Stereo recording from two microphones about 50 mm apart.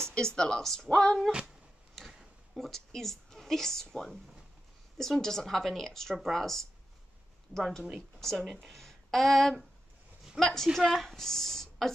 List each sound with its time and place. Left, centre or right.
0.0 s a woman's voice: centre
2.6 s a woman's voice: centre